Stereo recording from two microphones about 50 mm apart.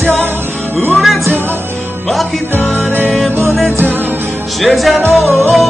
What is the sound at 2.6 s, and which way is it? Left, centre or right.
Music, centre.